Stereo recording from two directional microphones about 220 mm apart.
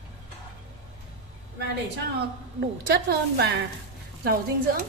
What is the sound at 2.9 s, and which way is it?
A woman's voice, 45° right (ahead or behind).